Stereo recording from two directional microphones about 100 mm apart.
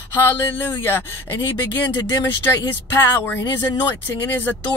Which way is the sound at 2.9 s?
20° left (ahead or behind).